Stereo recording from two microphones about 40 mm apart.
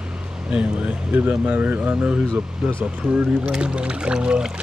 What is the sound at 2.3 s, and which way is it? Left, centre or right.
Speech, left.